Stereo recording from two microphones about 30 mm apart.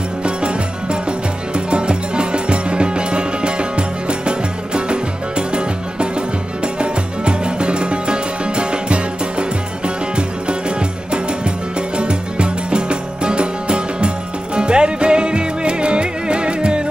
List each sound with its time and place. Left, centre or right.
0.2 s music: right
6.8 s music: right
12.0 s music: right